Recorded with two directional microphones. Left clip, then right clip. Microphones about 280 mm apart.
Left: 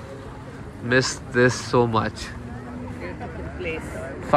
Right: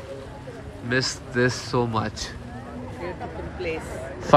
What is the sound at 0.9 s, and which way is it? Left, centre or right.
Speech, centre.